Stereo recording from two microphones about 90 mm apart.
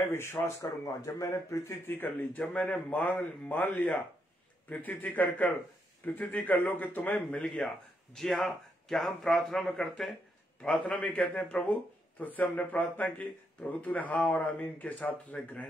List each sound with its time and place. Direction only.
0.1 s a man's voice: 25° left (ahead or behind); by 10.1 s 5° left (ahead or behind)
10.6 s a man's voice: 15° left (ahead or behind)